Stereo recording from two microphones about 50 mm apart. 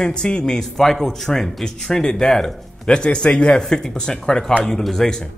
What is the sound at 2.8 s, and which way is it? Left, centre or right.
A man's voice, centre.